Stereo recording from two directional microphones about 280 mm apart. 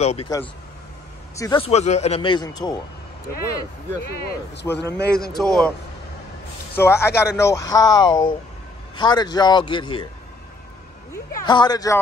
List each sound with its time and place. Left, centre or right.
0.0 s speech: left
1.4 s a man's voice: centre
4.6 s a man's voice: left
5.4 s a man's voice: centre
6.8 s a man's voice: centre
11.3 s a man's voice: centre